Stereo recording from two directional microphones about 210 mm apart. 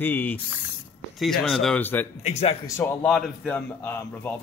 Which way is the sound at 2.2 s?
30° left (ahead or behind).